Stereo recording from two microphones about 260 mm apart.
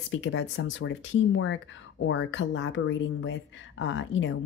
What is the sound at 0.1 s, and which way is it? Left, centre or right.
Speech, left.